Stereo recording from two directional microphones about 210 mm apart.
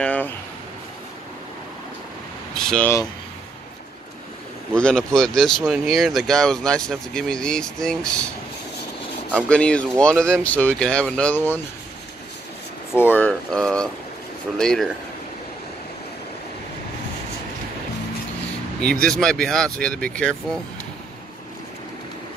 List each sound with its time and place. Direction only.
0.0 s a sound: 5° left (ahead or behind)
2.5 s speech: 5° left (ahead or behind)
4.7 s speech: 5° left (ahead or behind)
9.5 s speech: 5° left (ahead or behind)
12.9 s speech: 10° left (ahead or behind)
18.8 s speech: 5° left (ahead or behind)